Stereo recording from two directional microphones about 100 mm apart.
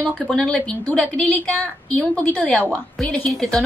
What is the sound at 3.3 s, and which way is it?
Speech, centre (ahead or behind).